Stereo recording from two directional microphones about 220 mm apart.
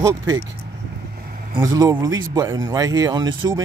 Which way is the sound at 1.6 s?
15° right (ahead or behind).